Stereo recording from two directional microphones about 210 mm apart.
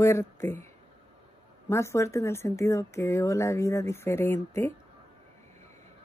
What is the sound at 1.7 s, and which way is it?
Speech, 15° left (ahead or behind).